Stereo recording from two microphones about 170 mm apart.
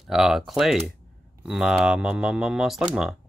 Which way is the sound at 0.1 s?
Centre (ahead or behind).